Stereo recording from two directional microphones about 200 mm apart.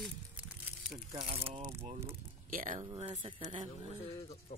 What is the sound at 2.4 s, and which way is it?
Speech, 40° right (ahead or behind).